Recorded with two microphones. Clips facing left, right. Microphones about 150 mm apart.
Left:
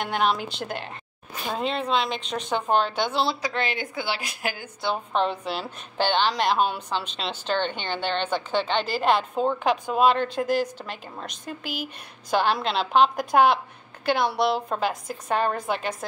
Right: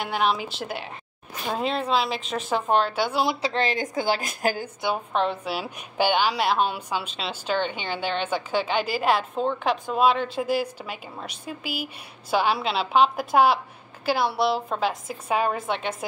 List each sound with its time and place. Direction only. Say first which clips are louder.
0.0 s a woman's voice: even; centre (ahead or behind)
3.4 s a woman's voice: right 3 dB; 35° right (ahead or behind)
5.1 s a woman's voice: even; centre (ahead or behind)